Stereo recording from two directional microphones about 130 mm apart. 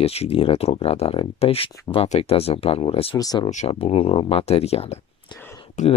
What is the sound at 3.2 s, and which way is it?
Speech, 30° left (ahead or behind).